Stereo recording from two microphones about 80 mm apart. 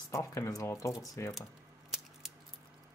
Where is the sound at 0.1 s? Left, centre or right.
Left.